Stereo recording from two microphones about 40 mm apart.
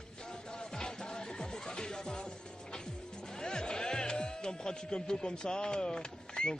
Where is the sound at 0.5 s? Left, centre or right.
Centre.